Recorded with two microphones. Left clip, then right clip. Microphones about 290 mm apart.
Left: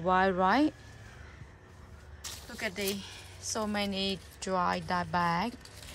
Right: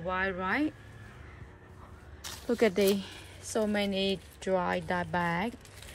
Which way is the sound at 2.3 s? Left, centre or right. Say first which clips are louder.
Right 10 dB; centre.